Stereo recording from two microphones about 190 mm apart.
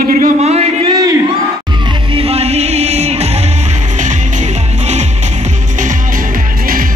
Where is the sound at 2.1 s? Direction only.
30° right (ahead or behind).